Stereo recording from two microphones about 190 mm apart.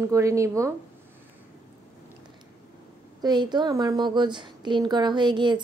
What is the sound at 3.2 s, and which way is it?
A woman's voice, 20° right (ahead or behind).